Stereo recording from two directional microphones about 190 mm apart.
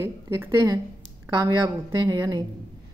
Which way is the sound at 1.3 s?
20° right (ahead or behind).